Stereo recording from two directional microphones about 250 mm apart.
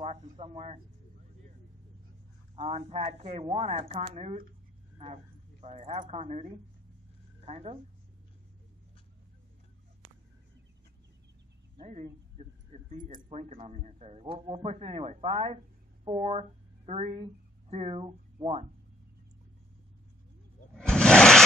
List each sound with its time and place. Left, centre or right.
0.0 s speech: right
2.5 s speech: right
7.4 s speech: right
11.7 s speech: right
20.7 s a sound: centre